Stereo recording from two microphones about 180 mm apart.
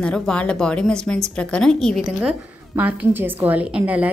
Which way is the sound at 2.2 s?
10° right (ahead or behind).